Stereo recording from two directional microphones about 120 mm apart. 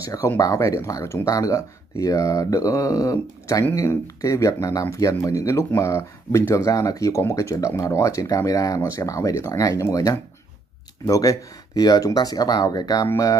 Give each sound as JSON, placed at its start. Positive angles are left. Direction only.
{"t": 0.0, "sound": "speech", "side_deg": 25}